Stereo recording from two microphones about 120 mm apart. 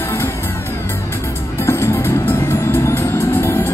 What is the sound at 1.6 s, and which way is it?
Music, 20° left (ahead or behind).